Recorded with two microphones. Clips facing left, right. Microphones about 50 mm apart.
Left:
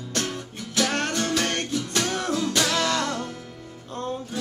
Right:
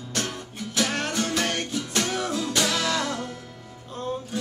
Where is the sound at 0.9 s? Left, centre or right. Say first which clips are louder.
Left 2 dB; centre.